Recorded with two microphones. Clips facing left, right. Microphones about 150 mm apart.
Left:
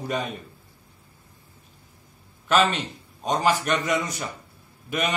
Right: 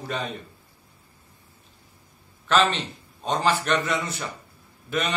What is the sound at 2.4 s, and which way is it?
A man's voice, 10° left (ahead or behind).